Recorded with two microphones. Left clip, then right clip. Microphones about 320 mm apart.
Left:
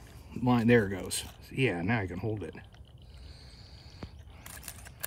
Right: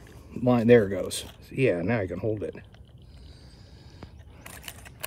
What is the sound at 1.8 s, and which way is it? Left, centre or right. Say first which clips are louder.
Speech: right 5 dB; left.